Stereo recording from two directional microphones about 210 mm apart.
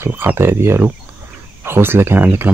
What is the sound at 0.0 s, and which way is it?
Speech, 10° right (ahead or behind).